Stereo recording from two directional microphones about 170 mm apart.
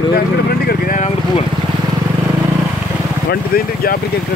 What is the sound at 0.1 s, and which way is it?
Vehicle, 65° left (ahead or behind).